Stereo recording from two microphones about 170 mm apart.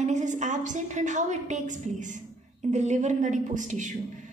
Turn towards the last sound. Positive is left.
turn(degrees=-45)  # may be behind; listen again after turning